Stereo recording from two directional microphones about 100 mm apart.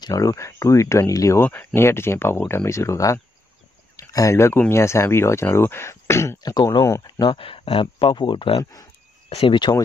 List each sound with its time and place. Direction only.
0.0 s speech: 35° left (ahead or behind)
1.4 s speech: 20° left (ahead or behind)
3.9 s a sound: 35° left (ahead or behind)
4.6 s speech: 25° left (ahead or behind)
6.4 s speech: 40° left (ahead or behind)
7.2 s speech: 55° left (ahead or behind)
9.5 s speech: 50° left (ahead or behind)